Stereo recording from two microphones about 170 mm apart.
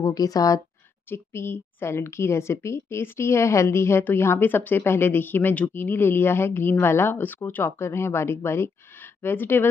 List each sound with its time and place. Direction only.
0.0 s a woman's voice: 20° left (ahead or behind)